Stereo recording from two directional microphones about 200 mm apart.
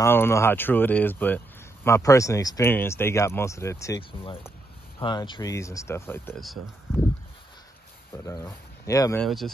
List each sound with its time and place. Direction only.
0.0 s speech: 10° left (ahead or behind)
8.3 s speech: 15° left (ahead or behind)
9.2 s speech: centre (ahead or behind)